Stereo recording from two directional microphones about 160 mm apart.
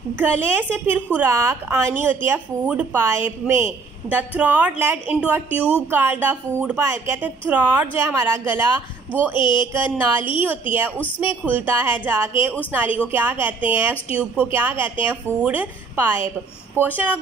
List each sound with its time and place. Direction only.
0.2 s a woman's voice: 15° right (ahead or behind)
9.4 s a sound: 30° left (ahead or behind)
10.4 s a woman's voice: 10° right (ahead or behind)